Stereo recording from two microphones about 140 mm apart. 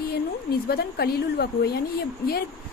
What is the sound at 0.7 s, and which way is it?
Speech, 90° left.